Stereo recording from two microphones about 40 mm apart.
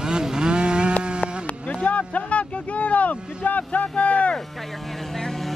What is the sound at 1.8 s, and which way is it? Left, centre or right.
Vehicle, left.